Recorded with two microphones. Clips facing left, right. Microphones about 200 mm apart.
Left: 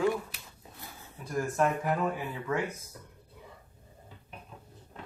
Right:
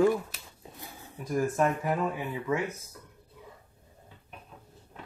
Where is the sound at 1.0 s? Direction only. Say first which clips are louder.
Right 4 dB; 10° right (ahead or behind).